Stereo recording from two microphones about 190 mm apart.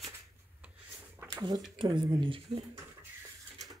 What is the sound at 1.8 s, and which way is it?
Speech, 25° right (ahead or behind).